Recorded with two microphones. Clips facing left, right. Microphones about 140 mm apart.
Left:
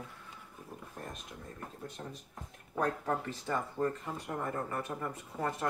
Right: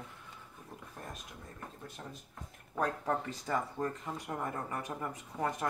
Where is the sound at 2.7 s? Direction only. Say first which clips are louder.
Left 1 dB; 10° right (ahead or behind).